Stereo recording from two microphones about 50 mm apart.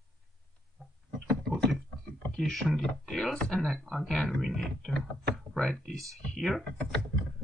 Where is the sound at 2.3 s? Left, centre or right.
Centre.